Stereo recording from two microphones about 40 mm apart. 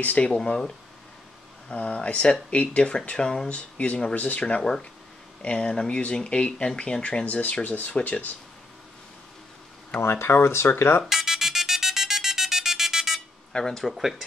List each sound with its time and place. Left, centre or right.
0.2 s speech: left
1.7 s speech: left
3.4 s speech: left
4.6 s speech: centre
5.4 s speech: left
7.2 s speech: left
9.9 s speech: left
11.1 s music: centre
13.5 s speech: centre
13.8 s speech: centre